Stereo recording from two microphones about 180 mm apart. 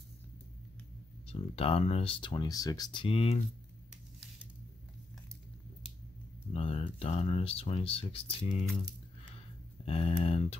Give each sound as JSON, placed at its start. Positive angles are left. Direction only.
{"t": 1.2, "sound": "speech", "side_deg": 35}
{"t": 6.5, "sound": "speech", "side_deg": 35}
{"t": 9.8, "sound": "speech", "side_deg": 30}